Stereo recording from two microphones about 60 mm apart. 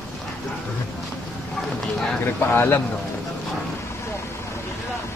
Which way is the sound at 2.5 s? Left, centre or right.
Left.